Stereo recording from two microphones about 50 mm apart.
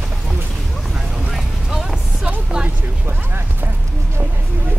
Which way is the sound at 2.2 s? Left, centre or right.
Right.